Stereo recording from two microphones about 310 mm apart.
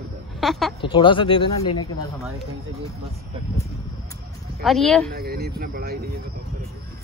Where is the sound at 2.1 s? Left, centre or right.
Centre.